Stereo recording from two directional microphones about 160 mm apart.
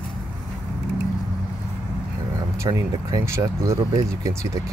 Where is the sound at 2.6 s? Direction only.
20° right (ahead or behind).